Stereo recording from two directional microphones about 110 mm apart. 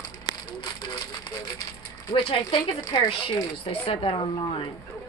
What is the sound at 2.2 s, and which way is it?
Speech, 55° left (ahead or behind).